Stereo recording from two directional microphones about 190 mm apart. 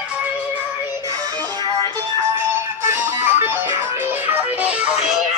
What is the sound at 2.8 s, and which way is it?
Music, 10° right (ahead or behind).